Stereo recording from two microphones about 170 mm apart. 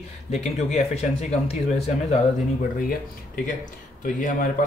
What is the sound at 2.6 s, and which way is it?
Speech, 55° left (ahead or behind).